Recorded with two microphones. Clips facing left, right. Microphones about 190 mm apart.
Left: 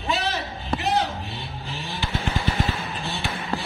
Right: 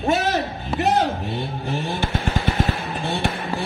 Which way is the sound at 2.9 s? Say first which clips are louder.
Right 7 dB; 55° right (ahead or behind).